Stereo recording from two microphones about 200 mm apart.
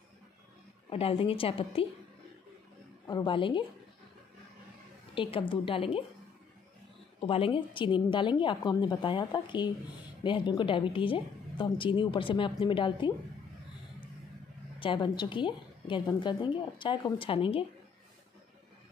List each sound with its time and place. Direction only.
0.8 s a woman's voice: 30° left (ahead or behind)
3.1 s a woman's voice: 25° left (ahead or behind)
5.1 s a woman's voice: 25° left (ahead or behind)
7.2 s a woman's voice: 30° left (ahead or behind)
14.8 s a woman's voice: 25° left (ahead or behind)